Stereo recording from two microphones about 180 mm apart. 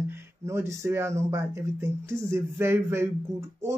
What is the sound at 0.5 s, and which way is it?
Speech, 15° right (ahead or behind).